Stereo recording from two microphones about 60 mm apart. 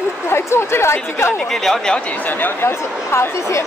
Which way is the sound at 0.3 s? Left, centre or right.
Left.